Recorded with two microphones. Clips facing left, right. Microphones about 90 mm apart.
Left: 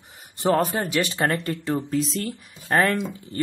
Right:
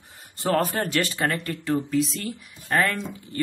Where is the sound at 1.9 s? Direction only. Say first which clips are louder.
Right 1 dB; 40° left (ahead or behind).